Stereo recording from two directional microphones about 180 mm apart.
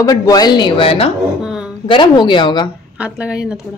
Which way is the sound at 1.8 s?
25° left (ahead or behind).